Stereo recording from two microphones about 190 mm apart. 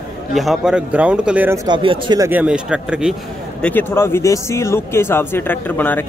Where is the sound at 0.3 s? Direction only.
Centre (ahead or behind).